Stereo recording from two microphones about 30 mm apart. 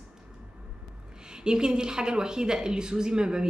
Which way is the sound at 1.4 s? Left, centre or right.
Right.